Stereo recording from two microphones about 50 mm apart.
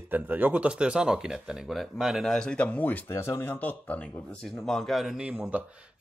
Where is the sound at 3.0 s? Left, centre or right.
Left.